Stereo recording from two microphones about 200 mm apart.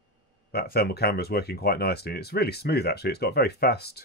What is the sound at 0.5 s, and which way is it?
Speech, 50° left (ahead or behind).